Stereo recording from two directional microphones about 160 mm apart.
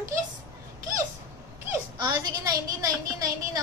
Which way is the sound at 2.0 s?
25° right (ahead or behind).